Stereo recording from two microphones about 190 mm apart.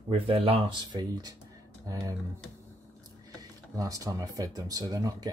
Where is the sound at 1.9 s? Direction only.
20° right (ahead or behind).